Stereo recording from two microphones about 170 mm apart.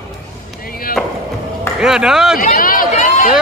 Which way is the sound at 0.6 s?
60° left (ahead or behind).